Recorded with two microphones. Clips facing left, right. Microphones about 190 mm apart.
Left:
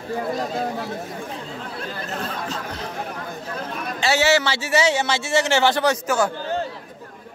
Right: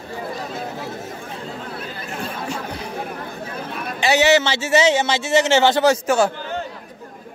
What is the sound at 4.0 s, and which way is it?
A man's voice, 20° right (ahead or behind).